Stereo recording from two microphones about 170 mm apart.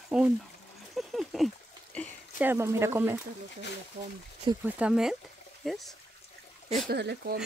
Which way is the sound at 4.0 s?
45° right (ahead or behind).